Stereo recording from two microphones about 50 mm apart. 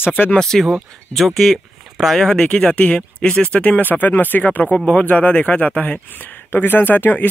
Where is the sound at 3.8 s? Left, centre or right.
Left.